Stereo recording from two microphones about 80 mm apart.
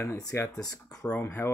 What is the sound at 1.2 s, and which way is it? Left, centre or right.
Speech, left.